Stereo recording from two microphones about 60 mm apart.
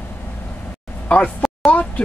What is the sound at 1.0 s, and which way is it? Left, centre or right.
Speech, left.